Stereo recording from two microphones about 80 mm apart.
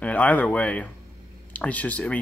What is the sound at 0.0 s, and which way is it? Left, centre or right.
Speech, centre.